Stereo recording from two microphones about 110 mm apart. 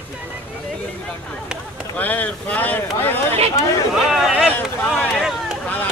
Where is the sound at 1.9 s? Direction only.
15° left (ahead or behind).